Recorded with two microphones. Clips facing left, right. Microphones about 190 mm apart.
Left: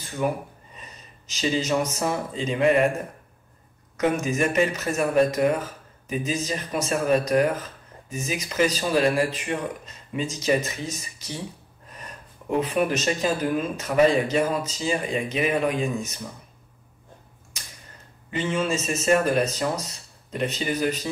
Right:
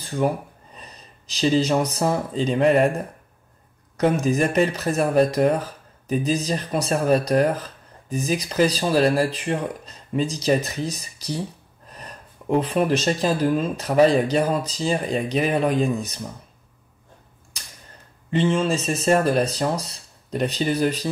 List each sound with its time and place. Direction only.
0.7 s speech: 35° right (ahead or behind)
3.9 s speech: 35° right (ahead or behind)
18.3 s speech: 30° right (ahead or behind)